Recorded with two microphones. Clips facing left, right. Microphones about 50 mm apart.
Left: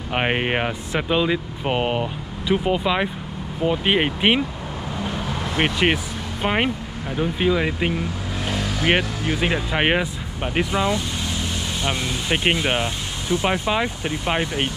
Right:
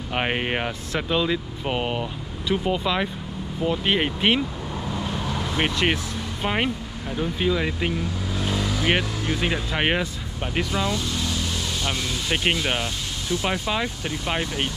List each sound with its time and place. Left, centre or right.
0.1 s speech: centre
5.6 s speech: centre